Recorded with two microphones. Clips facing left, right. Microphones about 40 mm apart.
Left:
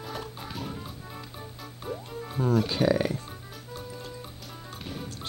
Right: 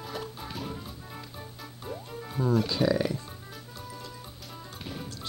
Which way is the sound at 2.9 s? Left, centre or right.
Left.